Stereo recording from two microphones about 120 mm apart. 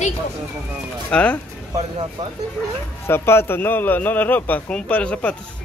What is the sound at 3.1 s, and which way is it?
Speech, 20° left (ahead or behind).